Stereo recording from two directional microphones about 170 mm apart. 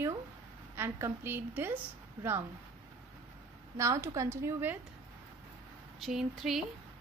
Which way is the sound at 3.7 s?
15° right (ahead or behind).